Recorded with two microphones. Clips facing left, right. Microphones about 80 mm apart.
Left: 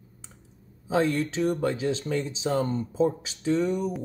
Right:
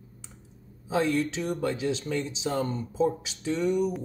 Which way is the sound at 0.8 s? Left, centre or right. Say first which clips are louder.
Left 1 dB; left.